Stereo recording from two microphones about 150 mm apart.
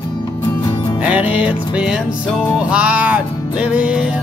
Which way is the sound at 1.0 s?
10° right (ahead or behind).